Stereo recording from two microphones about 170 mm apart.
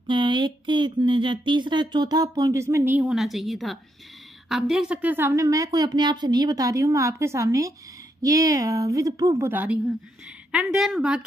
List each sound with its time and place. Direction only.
0.0 s a woman's voice: 30° right (ahead or behind); by 11.2 s 5° right (ahead or behind)